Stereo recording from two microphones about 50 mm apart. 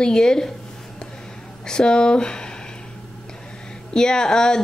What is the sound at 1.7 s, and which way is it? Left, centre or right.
Speech, centre.